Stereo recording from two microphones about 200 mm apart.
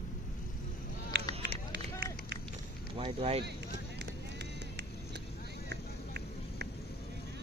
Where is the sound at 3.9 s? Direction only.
60° right (ahead or behind).